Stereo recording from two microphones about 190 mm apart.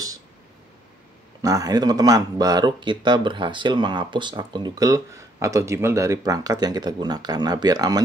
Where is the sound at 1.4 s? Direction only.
20° right (ahead or behind).